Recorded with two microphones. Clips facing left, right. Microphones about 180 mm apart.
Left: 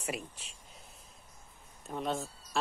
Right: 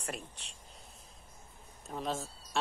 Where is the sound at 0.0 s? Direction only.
5° left (ahead or behind).